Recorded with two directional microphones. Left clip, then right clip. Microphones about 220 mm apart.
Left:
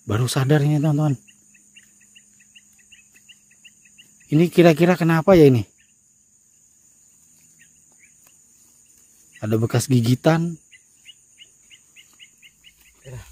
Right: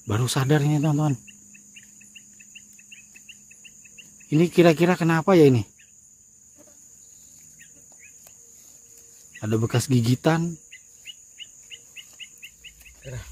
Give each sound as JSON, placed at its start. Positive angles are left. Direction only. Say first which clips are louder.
{"t": 0.0, "sound": "cricket", "louder": "left 2 dB", "side_deg": 15}
{"t": 4.3, "sound": "speech", "louder": "left 3 dB", "side_deg": 20}
{"t": 9.4, "sound": "speech", "louder": "left 3 dB", "side_deg": 20}
{"t": 10.7, "sound": "cricket", "louder": "right 4 dB", "side_deg": -50}
{"t": 13.0, "sound": "a sound", "louder": "right 2 dB", "side_deg": 10}